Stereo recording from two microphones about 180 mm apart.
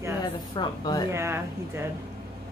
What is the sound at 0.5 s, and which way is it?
Speech, 25° left (ahead or behind).